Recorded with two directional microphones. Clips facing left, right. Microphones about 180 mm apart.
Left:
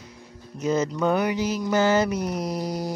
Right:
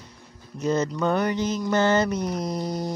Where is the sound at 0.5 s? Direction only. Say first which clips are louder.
Even; 5° left (ahead or behind).